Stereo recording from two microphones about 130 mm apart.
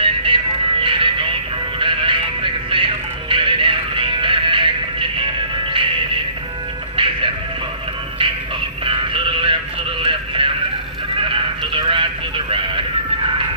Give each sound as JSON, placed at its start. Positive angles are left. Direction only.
{"t": 0.0, "sound": "music", "side_deg": -40}
{"t": 7.0, "sound": "music", "side_deg": -40}
{"t": 8.8, "sound": "music", "side_deg": -40}
{"t": 10.0, "sound": "a sound", "side_deg": -40}